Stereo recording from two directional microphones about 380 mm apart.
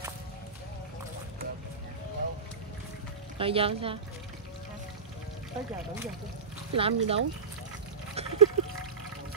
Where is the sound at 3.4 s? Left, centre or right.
Centre.